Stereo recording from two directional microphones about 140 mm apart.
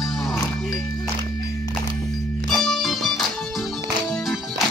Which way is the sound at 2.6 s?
Centre (ahead or behind).